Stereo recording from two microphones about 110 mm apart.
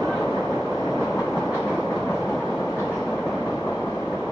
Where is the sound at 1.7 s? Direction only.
10° left (ahead or behind).